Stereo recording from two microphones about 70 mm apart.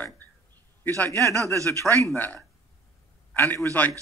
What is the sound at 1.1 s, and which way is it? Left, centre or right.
Speech, left.